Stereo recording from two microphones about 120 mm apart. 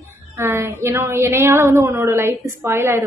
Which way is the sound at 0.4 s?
20° right (ahead or behind).